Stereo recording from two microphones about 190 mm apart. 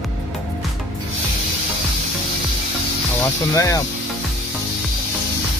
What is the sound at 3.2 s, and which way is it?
Speech, 15° left (ahead or behind).